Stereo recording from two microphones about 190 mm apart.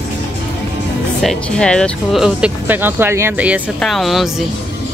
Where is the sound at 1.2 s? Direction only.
5° left (ahead or behind).